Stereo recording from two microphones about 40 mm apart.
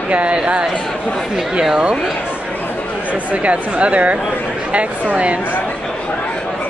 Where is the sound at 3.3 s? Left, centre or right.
Right.